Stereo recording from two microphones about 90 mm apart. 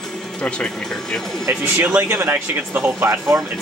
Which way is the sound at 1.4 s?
20° right (ahead or behind).